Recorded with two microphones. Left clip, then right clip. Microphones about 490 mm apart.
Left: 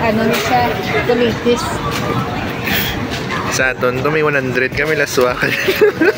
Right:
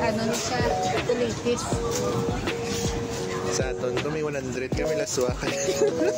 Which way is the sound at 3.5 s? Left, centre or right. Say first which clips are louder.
Left 15 dB; right.